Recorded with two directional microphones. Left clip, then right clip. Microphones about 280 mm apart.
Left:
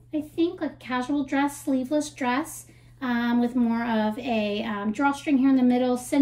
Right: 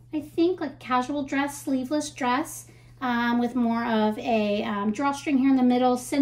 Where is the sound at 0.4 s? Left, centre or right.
Centre.